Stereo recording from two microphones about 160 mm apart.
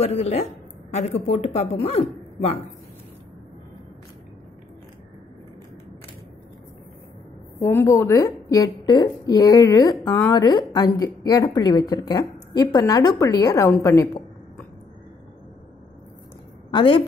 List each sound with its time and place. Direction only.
0.0 s a woman's voice: 40° left (ahead or behind)
7.6 s a woman's voice: 15° left (ahead or behind)
16.7 s speech: 30° left (ahead or behind)